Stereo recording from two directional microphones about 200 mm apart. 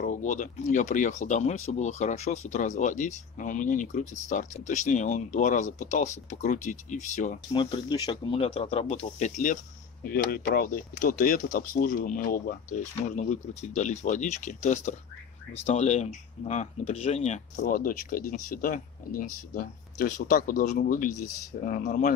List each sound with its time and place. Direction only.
0.0 s speech: 40° left (ahead or behind)
7.5 s speech: 20° left (ahead or behind); by 22.1 s 40° left (ahead or behind)